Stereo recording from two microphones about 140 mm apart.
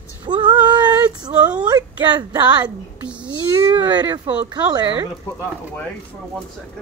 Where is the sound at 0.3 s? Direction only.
35° right (ahead or behind).